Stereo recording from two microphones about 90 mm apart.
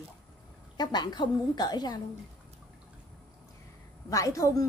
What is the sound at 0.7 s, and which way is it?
A woman's voice, 50° left (ahead or behind).